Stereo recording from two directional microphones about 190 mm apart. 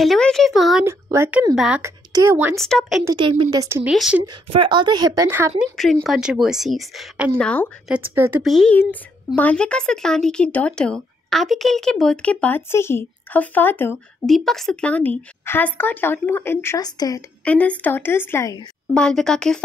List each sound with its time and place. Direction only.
0.0 s speech: centre (ahead or behind)
0.8 s speech: 15° right (ahead or behind)
1.5 s speech: centre (ahead or behind)
1.8 s speech: 15° right (ahead or behind); by 3.0 s 5° left (ahead or behind)
3.1 s a woman's voice: 25° right (ahead or behind)
3.9 s speech: centre (ahead or behind)
4.5 s a woman's voice: 25° right (ahead or behind)
5.8 s speech: centre (ahead or behind)
7.9 s speech: 15° right (ahead or behind)
8.4 s a woman's voice: centre (ahead or behind); by 17.2 s 20° left (ahead or behind)
17.5 s a woman's voice: 10° left (ahead or behind)
18.9 s speech: 5° left (ahead or behind)